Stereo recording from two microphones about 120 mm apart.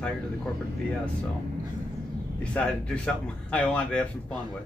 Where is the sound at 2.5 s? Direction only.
5° left (ahead or behind).